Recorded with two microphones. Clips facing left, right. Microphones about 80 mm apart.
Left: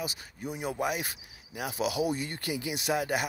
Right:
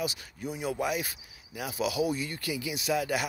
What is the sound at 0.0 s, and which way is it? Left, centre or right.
Cricket, left.